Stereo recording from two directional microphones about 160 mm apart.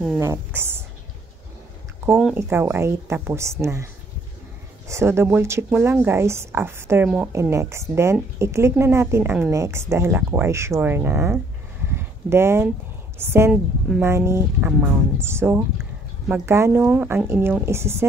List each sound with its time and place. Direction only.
0.2 s a woman's voice: 15° right (ahead or behind)
2.3 s a woman's voice: 15° right (ahead or behind)
11.9 s a sound: 15° right (ahead or behind)
13.2 s a woman's voice: 15° right (ahead or behind)
13.5 s a woman's voice: 5° right (ahead or behind)
14.0 s a woman's voice: 15° right (ahead or behind)